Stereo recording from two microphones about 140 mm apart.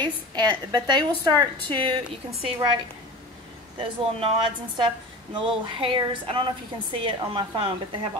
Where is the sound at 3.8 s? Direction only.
35° right (ahead or behind).